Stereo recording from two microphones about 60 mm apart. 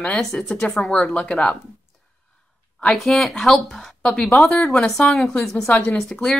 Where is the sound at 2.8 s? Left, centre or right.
Centre.